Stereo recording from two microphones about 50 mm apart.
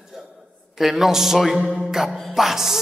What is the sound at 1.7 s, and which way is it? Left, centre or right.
Music, centre.